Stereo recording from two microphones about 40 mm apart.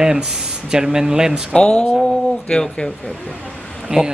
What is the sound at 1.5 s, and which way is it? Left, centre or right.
Speech, left.